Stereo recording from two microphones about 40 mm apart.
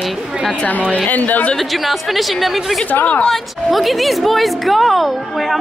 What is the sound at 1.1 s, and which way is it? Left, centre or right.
Speech, left.